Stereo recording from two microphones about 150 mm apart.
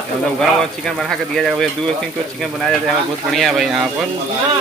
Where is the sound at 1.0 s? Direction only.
Centre (ahead or behind).